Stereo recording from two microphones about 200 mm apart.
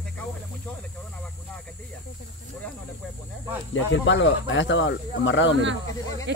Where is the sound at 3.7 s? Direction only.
65° left (ahead or behind).